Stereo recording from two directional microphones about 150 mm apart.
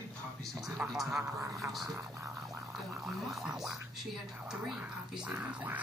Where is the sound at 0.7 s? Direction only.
5° right (ahead or behind).